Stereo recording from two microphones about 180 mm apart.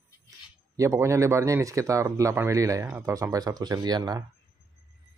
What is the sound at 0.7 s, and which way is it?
Speech, 15° right (ahead or behind).